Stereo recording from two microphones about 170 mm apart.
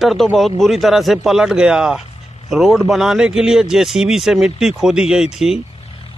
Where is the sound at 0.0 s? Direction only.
Centre (ahead or behind).